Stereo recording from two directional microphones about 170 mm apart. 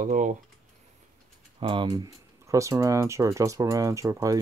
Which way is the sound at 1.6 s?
30° right (ahead or behind).